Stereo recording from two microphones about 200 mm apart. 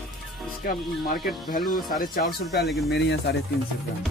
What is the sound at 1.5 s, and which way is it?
Speech, 45° left (ahead or behind).